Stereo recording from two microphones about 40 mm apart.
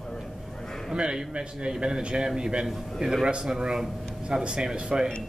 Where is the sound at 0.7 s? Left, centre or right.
Centre.